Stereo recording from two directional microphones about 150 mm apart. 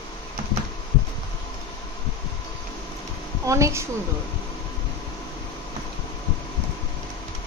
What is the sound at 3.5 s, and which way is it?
Speech, 20° right (ahead or behind).